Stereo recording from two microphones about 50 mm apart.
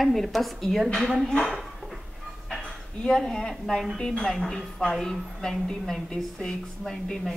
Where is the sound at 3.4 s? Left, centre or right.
Centre.